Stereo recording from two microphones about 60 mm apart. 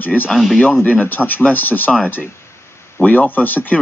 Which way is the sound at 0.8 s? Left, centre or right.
Left.